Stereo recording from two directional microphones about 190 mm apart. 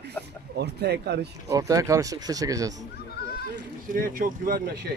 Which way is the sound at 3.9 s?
45° right (ahead or behind).